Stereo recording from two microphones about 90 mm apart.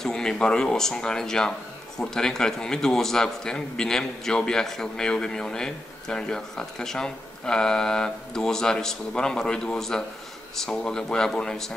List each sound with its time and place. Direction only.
0.0 s a man's voice: 5° left (ahead or behind)